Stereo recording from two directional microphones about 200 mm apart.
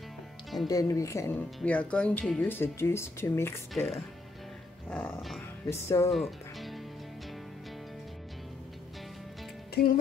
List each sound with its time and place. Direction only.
0.7 s speech: 15° left (ahead or behind)
3.7 s speech: centre (ahead or behind)
6.1 s music: centre (ahead or behind)
9.8 s music: 50° left (ahead or behind)